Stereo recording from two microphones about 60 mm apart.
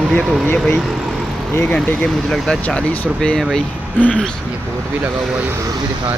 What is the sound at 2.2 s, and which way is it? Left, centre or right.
Speech, centre.